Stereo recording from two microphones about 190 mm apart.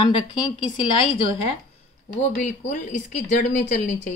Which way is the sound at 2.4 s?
40° left (ahead or behind).